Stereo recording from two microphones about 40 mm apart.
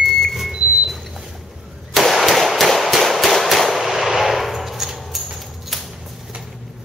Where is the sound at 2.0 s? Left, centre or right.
Centre.